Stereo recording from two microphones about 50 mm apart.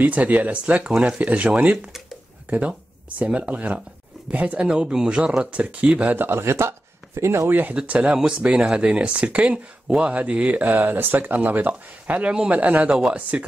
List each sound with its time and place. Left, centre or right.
0.0 s speech: right
3.4 s speech: right
4.6 s speech: centre
6.1 s speech: right
6.4 s speech: right
7.6 s speech: right
8.2 s speech: centre